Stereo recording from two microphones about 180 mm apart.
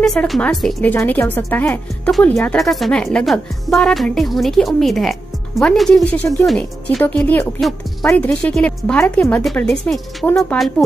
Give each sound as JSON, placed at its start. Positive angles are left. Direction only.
{"t": 0.0, "sound": "speech", "side_deg": 5}
{"t": 5.9, "sound": "speech", "side_deg": 15}
{"t": 6.4, "sound": "speech", "side_deg": 0}